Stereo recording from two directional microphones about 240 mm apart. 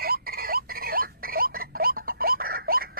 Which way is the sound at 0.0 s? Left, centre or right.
Right.